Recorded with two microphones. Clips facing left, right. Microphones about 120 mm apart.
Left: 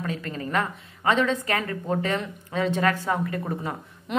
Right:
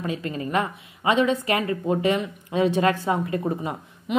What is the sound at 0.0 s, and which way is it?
A woman's voice, 15° right (ahead or behind).